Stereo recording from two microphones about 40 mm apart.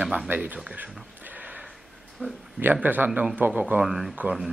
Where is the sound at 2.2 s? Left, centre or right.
Centre.